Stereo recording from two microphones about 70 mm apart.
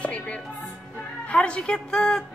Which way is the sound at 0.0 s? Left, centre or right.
Centre.